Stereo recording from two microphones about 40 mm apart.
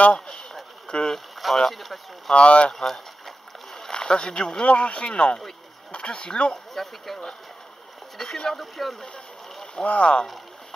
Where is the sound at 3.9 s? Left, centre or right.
Centre.